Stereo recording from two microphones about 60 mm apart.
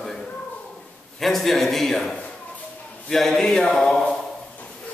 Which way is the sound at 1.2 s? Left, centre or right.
Centre.